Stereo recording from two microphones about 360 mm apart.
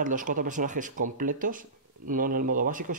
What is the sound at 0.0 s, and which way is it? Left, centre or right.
Speech, right.